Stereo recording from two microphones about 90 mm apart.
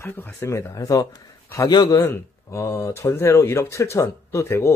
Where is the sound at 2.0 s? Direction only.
30° left (ahead or behind).